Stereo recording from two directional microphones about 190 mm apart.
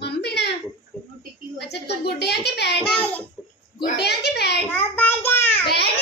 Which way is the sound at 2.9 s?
5° left (ahead or behind).